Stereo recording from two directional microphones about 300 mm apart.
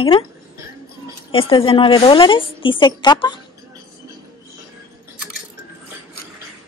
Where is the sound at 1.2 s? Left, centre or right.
Centre.